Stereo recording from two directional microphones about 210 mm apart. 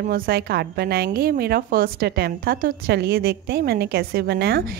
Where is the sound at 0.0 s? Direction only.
50° right (ahead or behind).